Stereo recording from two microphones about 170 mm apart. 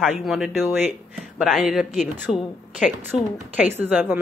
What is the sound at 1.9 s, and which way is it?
Speech, 45° left (ahead or behind).